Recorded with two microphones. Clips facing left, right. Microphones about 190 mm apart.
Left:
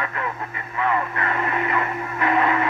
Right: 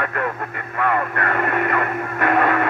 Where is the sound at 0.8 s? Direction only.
55° right (ahead or behind).